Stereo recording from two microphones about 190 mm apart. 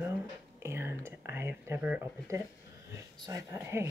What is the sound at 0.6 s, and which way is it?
Whispering, 15° right (ahead or behind).